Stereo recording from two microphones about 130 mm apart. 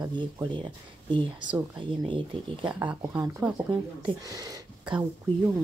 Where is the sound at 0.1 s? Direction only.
35° right (ahead or behind).